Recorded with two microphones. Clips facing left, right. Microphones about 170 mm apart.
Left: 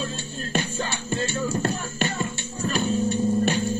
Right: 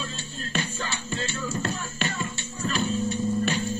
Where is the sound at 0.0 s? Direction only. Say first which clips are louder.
Left 5 dB; 55° left (ahead or behind).